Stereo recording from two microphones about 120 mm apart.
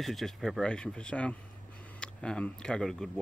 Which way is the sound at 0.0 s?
Centre (ahead or behind).